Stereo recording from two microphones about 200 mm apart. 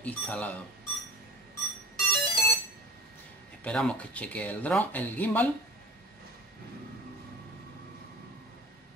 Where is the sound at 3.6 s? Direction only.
5° left (ahead or behind).